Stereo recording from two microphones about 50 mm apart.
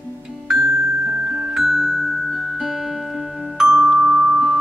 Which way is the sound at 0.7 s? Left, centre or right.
Centre.